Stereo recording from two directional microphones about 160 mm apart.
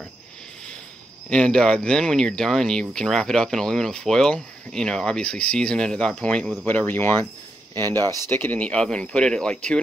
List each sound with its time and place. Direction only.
1.3 s speech: 5° left (ahead or behind)